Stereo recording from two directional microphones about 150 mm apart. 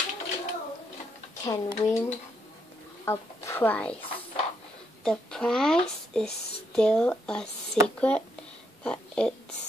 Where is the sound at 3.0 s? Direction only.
15° left (ahead or behind).